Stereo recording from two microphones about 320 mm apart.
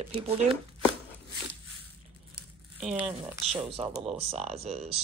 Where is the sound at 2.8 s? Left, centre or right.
Centre.